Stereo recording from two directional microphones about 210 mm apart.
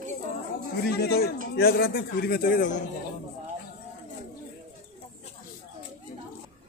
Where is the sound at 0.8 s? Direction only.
50° left (ahead or behind).